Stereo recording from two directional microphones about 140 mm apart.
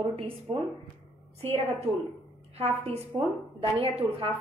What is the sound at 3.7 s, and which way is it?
Speech, 45° right (ahead or behind).